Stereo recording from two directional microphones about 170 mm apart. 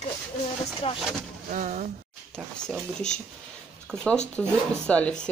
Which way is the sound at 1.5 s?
50° right (ahead or behind).